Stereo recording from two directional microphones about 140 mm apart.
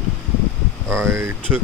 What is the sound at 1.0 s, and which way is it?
Speech, 20° right (ahead or behind).